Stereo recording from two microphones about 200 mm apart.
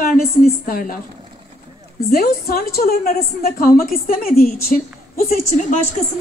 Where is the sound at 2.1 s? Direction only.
50° left (ahead or behind).